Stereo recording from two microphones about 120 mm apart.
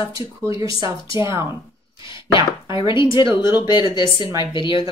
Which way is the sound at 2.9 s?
40° left (ahead or behind).